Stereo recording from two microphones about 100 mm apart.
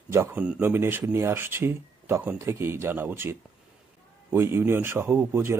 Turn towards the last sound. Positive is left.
turn(degrees=-20)  # may be behind; listen again after turning